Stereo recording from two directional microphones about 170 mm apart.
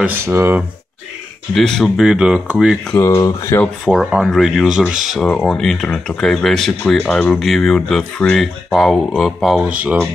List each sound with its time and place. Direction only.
0.0 s speech: 15° right (ahead or behind)
1.5 s speech: 5° left (ahead or behind)
3.0 s speech: 15° left (ahead or behind)
3.6 s speech: centre (ahead or behind)